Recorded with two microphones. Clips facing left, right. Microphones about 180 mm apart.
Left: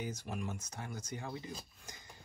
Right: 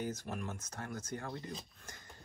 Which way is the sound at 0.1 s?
10° left (ahead or behind).